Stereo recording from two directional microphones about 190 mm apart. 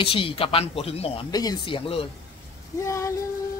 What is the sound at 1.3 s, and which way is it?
Speech, 20° left (ahead or behind).